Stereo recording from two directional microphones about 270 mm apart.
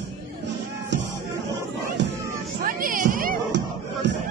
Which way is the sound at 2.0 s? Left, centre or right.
Right.